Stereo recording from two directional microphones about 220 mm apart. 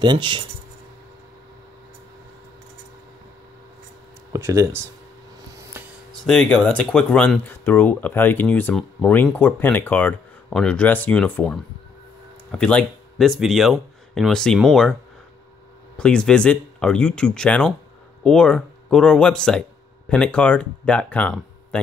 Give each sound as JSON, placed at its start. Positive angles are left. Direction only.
{"t": 0.0, "sound": "speech", "side_deg": -20}
{"t": 4.3, "sound": "speech", "side_deg": -15}
{"t": 5.6, "sound": "a sound", "side_deg": -10}
{"t": 6.2, "sound": "speech", "side_deg": 5}
{"t": 16.0, "sound": "speech", "side_deg": 5}